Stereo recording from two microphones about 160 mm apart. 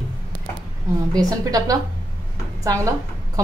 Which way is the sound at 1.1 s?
25° right (ahead or behind).